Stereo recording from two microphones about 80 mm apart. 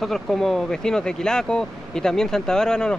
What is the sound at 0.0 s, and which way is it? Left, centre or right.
Speech, centre.